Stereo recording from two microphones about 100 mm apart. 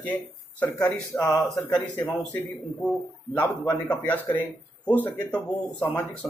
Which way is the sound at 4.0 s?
15° left (ahead or behind).